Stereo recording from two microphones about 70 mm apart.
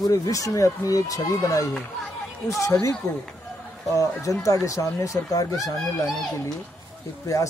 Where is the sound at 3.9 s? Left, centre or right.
Left.